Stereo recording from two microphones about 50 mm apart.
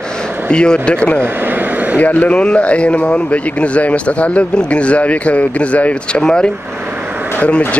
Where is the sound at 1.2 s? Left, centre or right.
Right.